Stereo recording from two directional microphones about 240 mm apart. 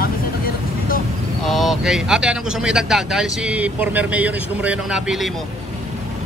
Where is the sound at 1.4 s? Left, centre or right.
Centre.